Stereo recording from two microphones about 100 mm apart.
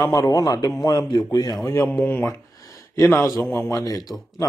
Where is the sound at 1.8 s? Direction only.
15° left (ahead or behind).